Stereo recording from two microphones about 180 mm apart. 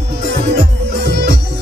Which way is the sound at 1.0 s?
60° right (ahead or behind).